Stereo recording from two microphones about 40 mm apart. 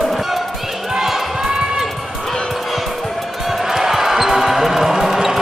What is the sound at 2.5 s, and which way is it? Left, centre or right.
Basketball bounce, centre.